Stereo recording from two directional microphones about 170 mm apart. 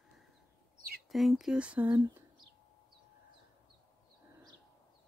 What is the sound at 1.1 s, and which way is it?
Speech, centre (ahead or behind).